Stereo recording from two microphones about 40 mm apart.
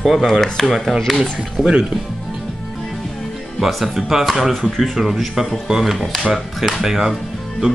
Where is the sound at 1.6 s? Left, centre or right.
Centre.